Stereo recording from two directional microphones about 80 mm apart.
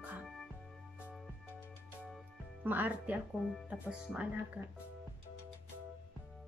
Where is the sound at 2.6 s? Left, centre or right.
Right.